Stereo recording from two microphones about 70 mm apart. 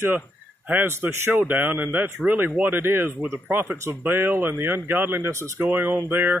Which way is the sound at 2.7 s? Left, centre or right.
Right.